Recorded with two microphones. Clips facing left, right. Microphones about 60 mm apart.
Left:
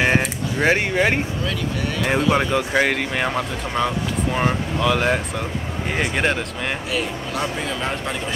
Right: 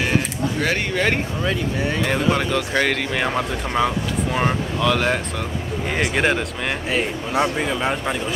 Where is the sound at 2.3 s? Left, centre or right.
Centre.